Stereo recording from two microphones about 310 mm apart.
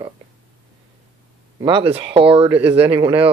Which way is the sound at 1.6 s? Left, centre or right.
Centre.